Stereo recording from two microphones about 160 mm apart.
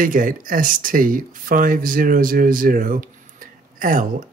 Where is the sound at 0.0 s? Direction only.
55° right (ahead or behind).